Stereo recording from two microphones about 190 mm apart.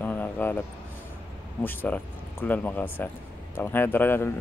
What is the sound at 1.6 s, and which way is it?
Speech, 10° left (ahead or behind).